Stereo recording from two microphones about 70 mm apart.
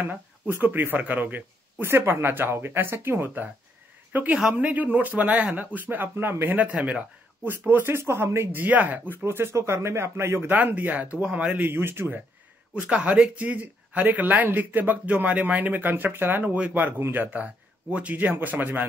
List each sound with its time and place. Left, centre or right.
0.0 s speech: right
7.4 s speech: right
8.6 s speech: right
9.2 s speech: right
10.5 s speech: right
12.8 s speech: centre